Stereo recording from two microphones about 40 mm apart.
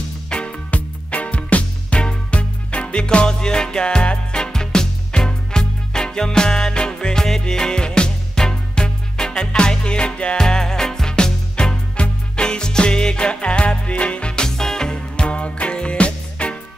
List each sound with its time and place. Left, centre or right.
0.3 s music: left
0.7 s music: left; by 15.2 s centre
15.2 s music: left